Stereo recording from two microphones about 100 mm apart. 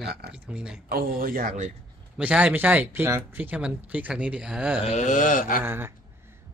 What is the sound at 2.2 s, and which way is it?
Speech, 10° right (ahead or behind).